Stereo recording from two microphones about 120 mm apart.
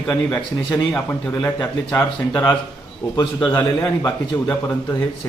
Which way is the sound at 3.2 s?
40° left (ahead or behind).